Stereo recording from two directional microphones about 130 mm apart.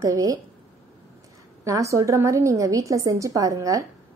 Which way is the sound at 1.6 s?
25° right (ahead or behind).